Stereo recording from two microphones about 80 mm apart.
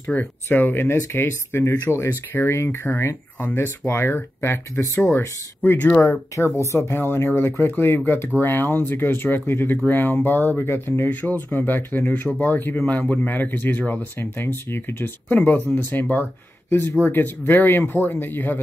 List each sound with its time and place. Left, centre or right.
0.0 s speech: left
6.0 s speech: left